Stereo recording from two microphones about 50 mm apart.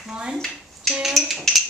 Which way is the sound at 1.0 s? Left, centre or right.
Centre.